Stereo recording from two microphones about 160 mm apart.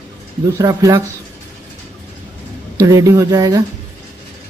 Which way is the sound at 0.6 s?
20° right (ahead or behind).